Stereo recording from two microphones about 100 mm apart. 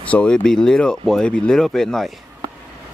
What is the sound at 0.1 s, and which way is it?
Speech, 10° left (ahead or behind).